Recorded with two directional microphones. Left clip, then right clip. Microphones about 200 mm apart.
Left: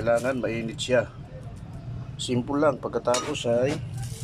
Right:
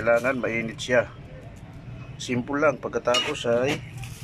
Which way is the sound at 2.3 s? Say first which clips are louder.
Right 1 dB; centre (ahead or behind).